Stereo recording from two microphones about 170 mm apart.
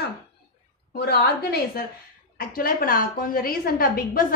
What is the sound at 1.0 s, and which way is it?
A woman's voice, 65° left (ahead or behind).